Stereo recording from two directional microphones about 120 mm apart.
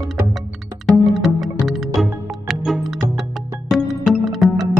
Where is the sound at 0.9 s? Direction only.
Centre (ahead or behind).